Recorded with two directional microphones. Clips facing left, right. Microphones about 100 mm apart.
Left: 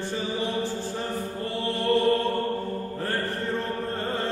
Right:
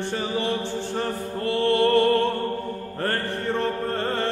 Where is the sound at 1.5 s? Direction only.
70° right (ahead or behind).